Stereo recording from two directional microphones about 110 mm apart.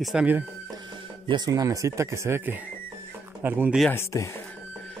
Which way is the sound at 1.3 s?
35° right (ahead or behind).